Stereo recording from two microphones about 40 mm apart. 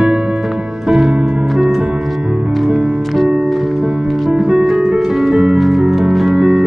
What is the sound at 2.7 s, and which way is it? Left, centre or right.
Music, right.